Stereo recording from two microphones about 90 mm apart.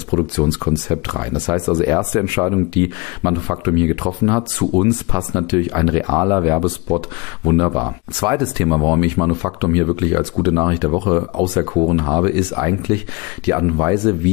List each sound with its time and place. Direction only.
0.1 s speech: 50° right (ahead or behind); by 6.6 s 30° right (ahead or behind)
6.9 s speech: 45° right (ahead or behind)
7.4 s speech: 55° right (ahead or behind)
13.9 s speech: 60° right (ahead or behind)